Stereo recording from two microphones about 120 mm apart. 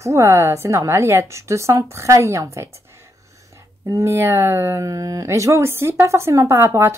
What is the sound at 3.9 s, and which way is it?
Speech, 25° right (ahead or behind).